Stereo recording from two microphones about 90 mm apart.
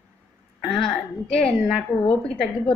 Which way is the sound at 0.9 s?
5° left (ahead or behind).